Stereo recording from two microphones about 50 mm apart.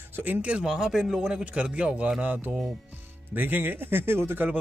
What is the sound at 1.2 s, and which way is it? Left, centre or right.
A man's voice, right.